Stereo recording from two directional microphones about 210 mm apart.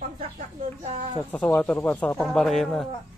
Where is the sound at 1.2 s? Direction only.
10° left (ahead or behind).